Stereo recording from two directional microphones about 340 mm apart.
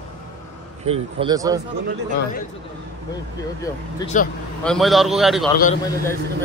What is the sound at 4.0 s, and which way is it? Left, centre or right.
Speech, centre.